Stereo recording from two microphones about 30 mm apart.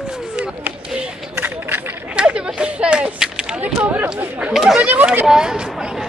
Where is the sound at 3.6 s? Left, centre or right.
Right.